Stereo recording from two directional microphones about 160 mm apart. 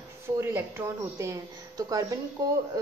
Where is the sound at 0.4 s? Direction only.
15° right (ahead or behind).